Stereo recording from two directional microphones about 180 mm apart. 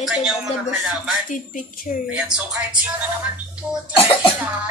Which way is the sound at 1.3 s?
45° left (ahead or behind).